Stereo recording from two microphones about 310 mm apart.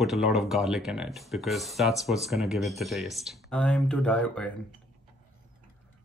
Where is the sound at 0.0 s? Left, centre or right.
Centre.